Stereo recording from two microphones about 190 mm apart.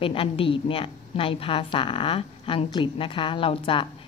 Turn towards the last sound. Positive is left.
turn(degrees=30)  # may be behind; listen again after turning